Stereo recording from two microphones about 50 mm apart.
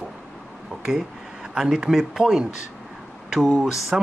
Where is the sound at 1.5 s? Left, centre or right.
Centre.